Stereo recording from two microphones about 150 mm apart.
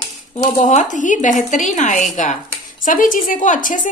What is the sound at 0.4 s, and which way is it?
A woman's voice, 55° left (ahead or behind).